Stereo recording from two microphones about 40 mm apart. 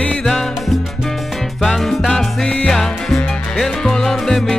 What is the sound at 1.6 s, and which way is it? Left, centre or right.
Music, centre.